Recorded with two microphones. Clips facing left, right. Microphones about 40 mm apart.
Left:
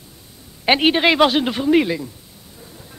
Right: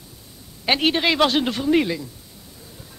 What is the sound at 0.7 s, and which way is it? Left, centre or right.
A man's voice, centre.